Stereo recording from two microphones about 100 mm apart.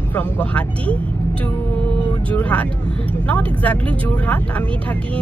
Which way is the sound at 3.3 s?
15° left (ahead or behind).